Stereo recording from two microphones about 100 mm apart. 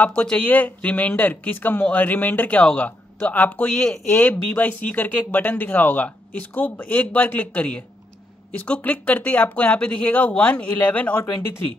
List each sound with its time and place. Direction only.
0.0 s speech: 10° left (ahead or behind)
3.7 s speech: 5° left (ahead or behind)
4.1 s speech: 20° left (ahead or behind)